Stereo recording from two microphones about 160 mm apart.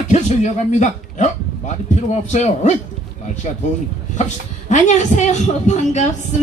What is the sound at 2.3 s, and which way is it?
Speech, 45° left (ahead or behind).